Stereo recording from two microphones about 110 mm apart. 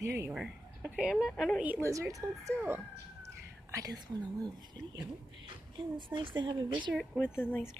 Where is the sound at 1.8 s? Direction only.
30° right (ahead or behind).